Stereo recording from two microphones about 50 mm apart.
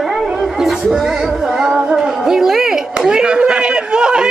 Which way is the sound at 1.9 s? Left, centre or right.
Centre.